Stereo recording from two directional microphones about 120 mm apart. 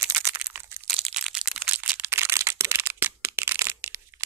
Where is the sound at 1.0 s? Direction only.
5° right (ahead or behind); by 4.0 s 20° right (ahead or behind).